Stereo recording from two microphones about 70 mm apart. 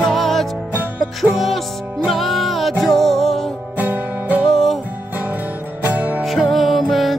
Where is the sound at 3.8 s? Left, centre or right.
Right.